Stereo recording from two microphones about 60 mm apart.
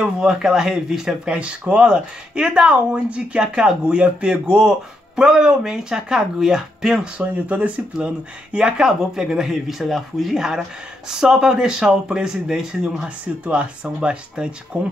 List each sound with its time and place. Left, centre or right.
0.0 s speech: centre
7.4 s speech: right